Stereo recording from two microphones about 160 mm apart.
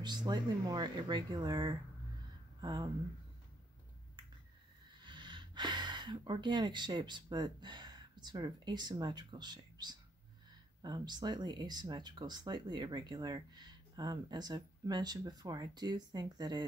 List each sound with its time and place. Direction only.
0.0 s speech: 25° right (ahead or behind)
5.0 s speech: 30° right (ahead or behind)